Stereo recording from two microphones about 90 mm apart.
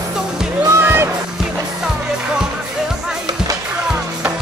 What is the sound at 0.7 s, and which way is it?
Music, 25° right (ahead or behind).